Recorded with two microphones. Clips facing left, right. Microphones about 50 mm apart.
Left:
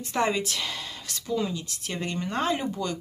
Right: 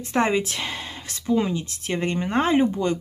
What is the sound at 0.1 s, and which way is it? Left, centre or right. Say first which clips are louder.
Speech: right 4 dB; right.